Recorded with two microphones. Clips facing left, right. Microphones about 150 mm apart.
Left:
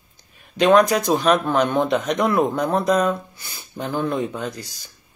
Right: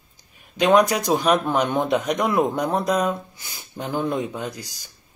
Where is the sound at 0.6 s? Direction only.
15° right (ahead or behind).